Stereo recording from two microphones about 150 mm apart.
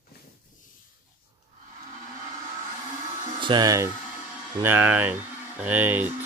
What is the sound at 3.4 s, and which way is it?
Speech, 25° right (ahead or behind).